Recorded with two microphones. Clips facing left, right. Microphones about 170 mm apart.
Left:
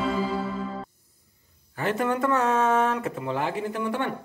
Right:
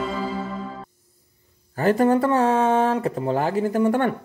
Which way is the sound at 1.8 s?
40° right (ahead or behind).